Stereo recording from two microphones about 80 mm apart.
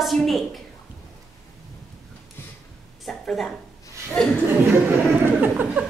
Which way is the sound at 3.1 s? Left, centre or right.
Centre.